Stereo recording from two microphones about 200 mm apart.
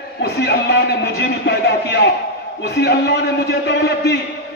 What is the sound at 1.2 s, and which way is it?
A man's voice, 55° left (ahead or behind).